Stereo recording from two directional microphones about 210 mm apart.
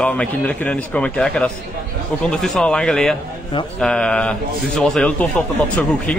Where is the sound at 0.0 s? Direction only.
5° left (ahead or behind).